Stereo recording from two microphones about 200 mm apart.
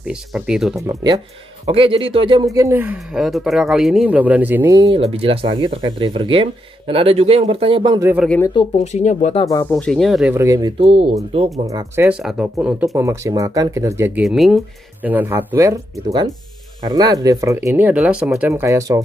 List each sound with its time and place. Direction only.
0.0 s speech: 5° right (ahead or behind)
0.7 s speech: 15° right (ahead or behind)
4.9 s speech: 30° right (ahead or behind)
8.5 s speech: 35° left (ahead or behind)
9.5 s speech: 10° left (ahead or behind)
10.3 s speech: 15° right (ahead or behind)
11.5 s speech: 15° right (ahead or behind)
12.2 s speech: centre (ahead or behind)
12.8 s speech: 15° right (ahead or behind)
14.2 s speech: centre (ahead or behind); by 19.0 s 15° right (ahead or behind)